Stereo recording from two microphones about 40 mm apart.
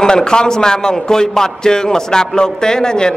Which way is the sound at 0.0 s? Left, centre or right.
Centre.